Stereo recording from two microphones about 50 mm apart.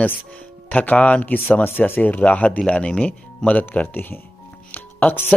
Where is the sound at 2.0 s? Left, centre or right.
Left.